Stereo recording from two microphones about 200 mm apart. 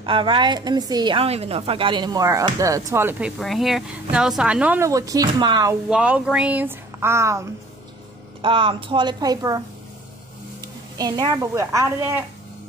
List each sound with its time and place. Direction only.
0.0 s a woman's voice: 25° right (ahead or behind)
5.9 s a woman's voice: 5° right (ahead or behind)
8.4 s a woman's voice: 25° right (ahead or behind)
10.6 s a woman's voice: 20° right (ahead or behind)